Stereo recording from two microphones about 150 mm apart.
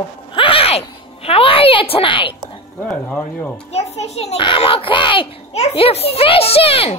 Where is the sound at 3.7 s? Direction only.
45° left (ahead or behind).